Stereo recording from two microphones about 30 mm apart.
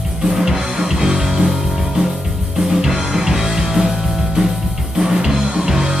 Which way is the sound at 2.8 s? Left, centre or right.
Centre.